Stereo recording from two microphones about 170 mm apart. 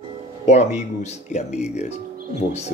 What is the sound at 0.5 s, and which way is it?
Speech, 40° left (ahead or behind).